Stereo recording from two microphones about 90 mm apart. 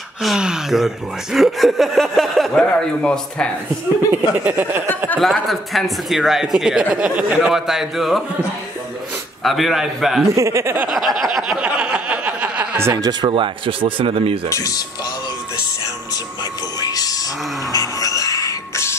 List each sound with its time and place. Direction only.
0.2 s speech: 5° right (ahead or behind); by 3.4 s 10° left (ahead or behind)
4.1 s speech: 20° right (ahead or behind)
5.2 s speech: centre (ahead or behind)
9.4 s speech: centre (ahead or behind)
10.3 s speech: 35° right (ahead or behind)
10.9 s speech: centre (ahead or behind)
11.6 s a sound: 15° right (ahead or behind)
12.9 s speech: 50° right (ahead or behind)
13.3 s speech: 75° right (ahead or behind)
14.5 s speech: 40° left (ahead or behind)
16.8 s a sound: 45° left (ahead or behind)
17.7 s music: 40° left (ahead or behind)